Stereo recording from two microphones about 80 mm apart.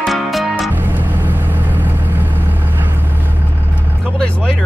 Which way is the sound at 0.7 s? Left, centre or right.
Right.